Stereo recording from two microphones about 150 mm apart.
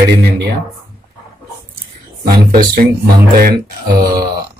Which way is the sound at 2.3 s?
70° right (ahead or behind).